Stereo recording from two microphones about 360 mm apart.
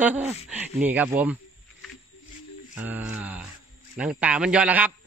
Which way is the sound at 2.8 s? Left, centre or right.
Centre.